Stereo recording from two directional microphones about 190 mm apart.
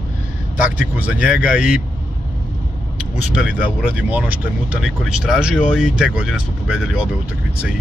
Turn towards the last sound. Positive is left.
turn(degrees=-5)  # may be behind; listen again after turning